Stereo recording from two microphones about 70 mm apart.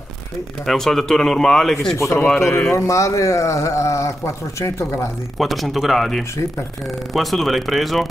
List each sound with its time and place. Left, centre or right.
0.7 s speech: centre
2.1 s speech: centre
2.7 s a man's voice: left
5.4 s speech: centre